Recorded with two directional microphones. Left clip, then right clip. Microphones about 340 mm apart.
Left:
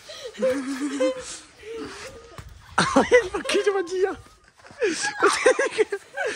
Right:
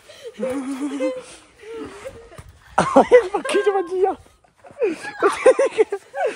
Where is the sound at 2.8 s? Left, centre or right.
Centre.